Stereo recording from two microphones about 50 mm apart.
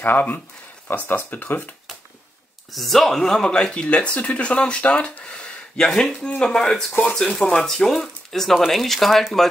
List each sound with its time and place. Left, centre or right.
0.0 s speech: left
2.7 s speech: centre
3.4 s speech: centre